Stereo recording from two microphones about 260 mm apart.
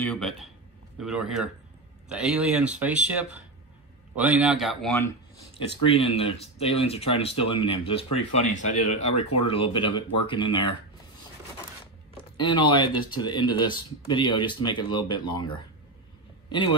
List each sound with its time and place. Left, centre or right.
0.0 s speech: centre
5.9 s speech: left
12.4 s a man's voice: centre